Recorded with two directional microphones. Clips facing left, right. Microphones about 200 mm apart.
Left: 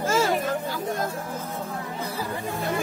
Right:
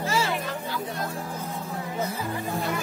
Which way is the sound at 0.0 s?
50° left (ahead or behind).